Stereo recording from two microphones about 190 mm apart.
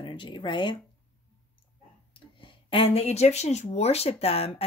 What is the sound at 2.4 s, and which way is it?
Speech, 30° left (ahead or behind).